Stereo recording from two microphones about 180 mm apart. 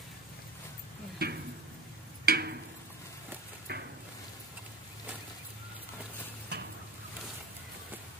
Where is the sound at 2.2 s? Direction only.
65° right (ahead or behind).